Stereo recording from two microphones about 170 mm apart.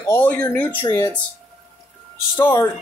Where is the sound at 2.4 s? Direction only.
20° left (ahead or behind).